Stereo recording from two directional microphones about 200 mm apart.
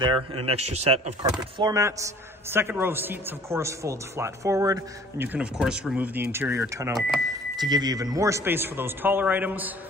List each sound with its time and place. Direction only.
0.0 s speech: 25° right (ahead or behind)
1.6 s a man's voice: 15° right (ahead or behind)